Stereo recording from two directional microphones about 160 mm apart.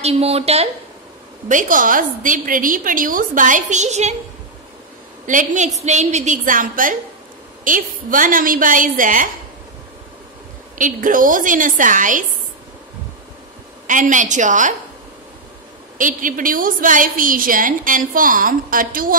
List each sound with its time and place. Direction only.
0.0 s a woman's voice: 40° right (ahead or behind)
1.5 s a woman's voice: 55° right (ahead or behind)
5.2 s a woman's voice: 55° right (ahead or behind)
10.8 s a woman's voice: 55° right (ahead or behind)
13.8 s a woman's voice: 55° right (ahead or behind)
16.0 s a woman's voice: 55° right (ahead or behind)